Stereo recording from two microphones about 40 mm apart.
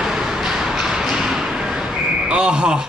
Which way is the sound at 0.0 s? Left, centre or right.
Centre.